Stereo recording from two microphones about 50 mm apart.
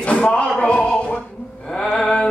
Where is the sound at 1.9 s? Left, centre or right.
Centre.